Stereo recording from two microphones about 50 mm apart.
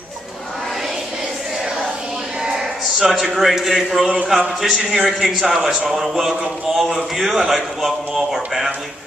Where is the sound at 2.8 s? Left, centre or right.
Centre.